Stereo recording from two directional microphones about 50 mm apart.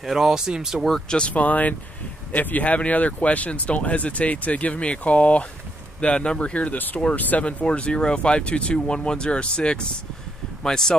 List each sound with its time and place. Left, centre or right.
0.0 s speech: centre
1.0 s speech: centre
1.3 s speech: left
7.6 s speech: left